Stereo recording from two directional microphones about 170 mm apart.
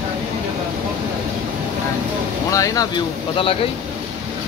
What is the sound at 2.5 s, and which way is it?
Speech, 20° left (ahead or behind).